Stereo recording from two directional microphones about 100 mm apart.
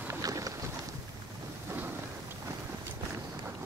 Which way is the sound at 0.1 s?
35° right (ahead or behind).